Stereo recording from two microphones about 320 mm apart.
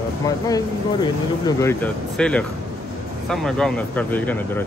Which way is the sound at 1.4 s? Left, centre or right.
Centre.